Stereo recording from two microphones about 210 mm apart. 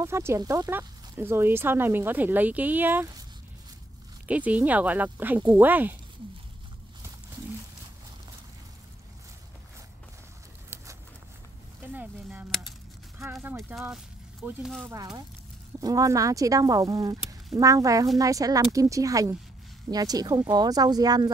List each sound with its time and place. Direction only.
0.0 s speech: 10° right (ahead or behind)
4.3 s speech: 5° right (ahead or behind)
10.7 s a sound: 10° right (ahead or behind)
13.3 s speech: 10° right (ahead or behind)
15.8 s speech: 15° right (ahead or behind)